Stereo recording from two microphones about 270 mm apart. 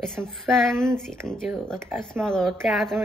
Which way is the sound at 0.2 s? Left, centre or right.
Centre.